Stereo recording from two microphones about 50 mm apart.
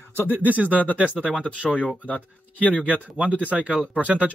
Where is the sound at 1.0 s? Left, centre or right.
Centre.